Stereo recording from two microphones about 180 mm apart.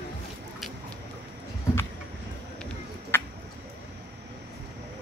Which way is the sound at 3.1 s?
10° left (ahead or behind).